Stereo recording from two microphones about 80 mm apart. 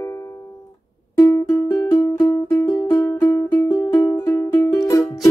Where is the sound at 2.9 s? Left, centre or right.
Left.